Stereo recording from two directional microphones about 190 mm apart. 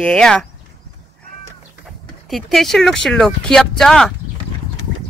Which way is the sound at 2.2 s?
Centre (ahead or behind).